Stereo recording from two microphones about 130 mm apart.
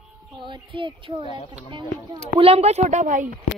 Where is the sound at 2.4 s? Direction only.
50° right (ahead or behind); by 3.3 s 75° right (ahead or behind).